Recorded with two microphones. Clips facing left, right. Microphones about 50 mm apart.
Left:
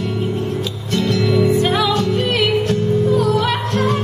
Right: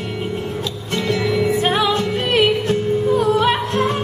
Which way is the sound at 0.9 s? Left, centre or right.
Right.